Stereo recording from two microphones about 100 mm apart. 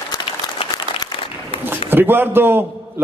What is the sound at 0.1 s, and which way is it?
Applause, 40° left (ahead or behind).